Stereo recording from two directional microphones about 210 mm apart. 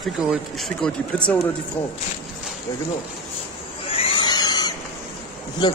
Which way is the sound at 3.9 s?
25° left (ahead or behind).